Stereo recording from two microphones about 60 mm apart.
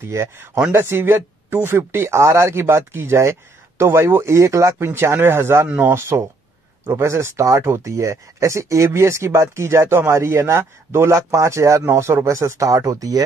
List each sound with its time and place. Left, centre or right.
0.0 s speech: right
4.7 s speech: right